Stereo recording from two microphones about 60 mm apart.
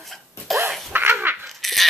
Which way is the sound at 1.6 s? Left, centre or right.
Centre.